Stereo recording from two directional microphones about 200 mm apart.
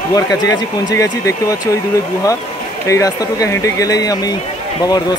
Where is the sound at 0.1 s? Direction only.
20° left (ahead or behind).